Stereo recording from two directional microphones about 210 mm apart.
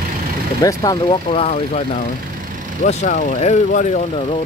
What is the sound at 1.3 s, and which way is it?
Speech, 30° left (ahead or behind).